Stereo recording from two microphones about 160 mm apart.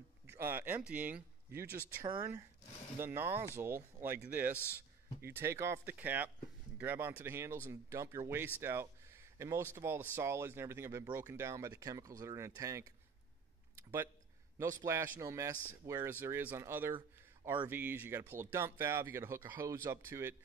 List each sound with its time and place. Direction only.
0.3 s speech: 15° right (ahead or behind)
3.0 s speech: 15° right (ahead or behind)
8.5 s a sound: 15° right (ahead or behind)
9.8 s speech: 15° right (ahead or behind)
13.7 s a sound: 15° right (ahead or behind)
14.6 s a man's voice: 20° right (ahead or behind)